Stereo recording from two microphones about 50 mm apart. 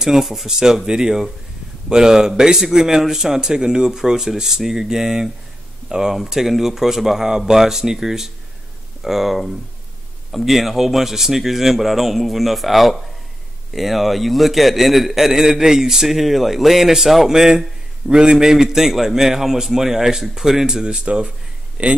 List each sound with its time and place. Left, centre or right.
0.0 s a man's voice: centre; by 21.9 s right